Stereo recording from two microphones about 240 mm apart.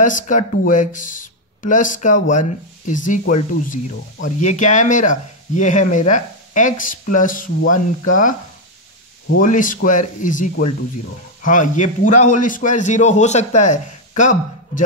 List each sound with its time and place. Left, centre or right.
0.0 s speech: left
9.4 s speech: left